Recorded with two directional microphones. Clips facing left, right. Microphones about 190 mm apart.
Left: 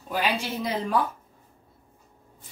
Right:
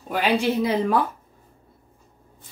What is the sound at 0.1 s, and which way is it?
Speech, 60° right (ahead or behind).